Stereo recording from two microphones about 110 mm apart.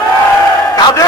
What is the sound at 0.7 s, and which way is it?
Speech, 35° left (ahead or behind).